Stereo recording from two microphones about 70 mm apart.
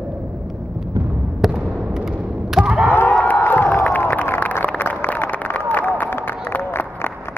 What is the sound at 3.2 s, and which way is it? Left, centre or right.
Crowd, left.